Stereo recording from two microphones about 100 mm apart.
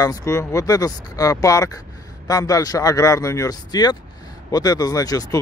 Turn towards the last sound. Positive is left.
turn(degrees=40)  # may be behind; listen again after turning